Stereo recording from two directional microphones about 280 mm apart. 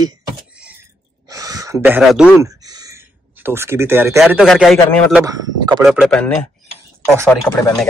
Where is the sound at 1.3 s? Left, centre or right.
Centre.